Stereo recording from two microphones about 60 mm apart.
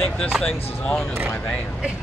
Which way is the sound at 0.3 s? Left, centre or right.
Centre.